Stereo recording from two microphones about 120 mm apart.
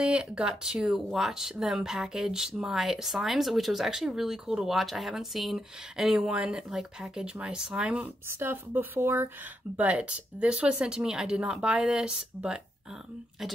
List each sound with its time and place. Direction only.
0.0 s speech: 10° right (ahead or behind)
8.4 s speech: 20° right (ahead or behind)